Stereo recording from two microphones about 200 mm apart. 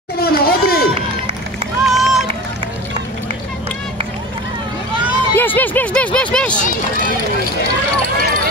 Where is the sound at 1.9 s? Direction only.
Centre (ahead or behind).